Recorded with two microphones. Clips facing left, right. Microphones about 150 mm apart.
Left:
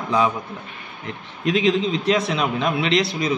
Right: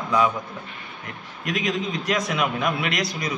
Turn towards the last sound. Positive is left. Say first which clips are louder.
# left 6 dB
turn(degrees=25)  # may be behind; listen again after turning